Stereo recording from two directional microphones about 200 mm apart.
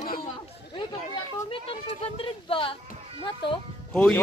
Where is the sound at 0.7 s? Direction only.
25° left (ahead or behind).